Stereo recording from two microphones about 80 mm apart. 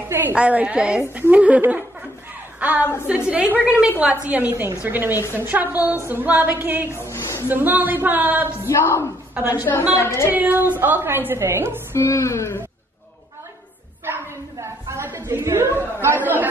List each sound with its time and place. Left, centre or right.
0.3 s a woman's voice: centre
6.9 s a woman's voice: left
7.4 s speech: right
8.5 s speech: left
9.3 s a woman's voice: right
9.9 s speech: left
10.3 s speech: right
11.9 s speech: left
14.0 s a sound: right
15.1 s chatter: right